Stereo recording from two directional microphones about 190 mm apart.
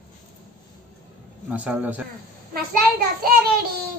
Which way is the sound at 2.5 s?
50° right (ahead or behind).